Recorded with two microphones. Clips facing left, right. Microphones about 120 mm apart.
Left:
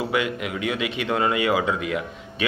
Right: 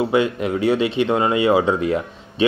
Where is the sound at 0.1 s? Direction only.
30° right (ahead or behind).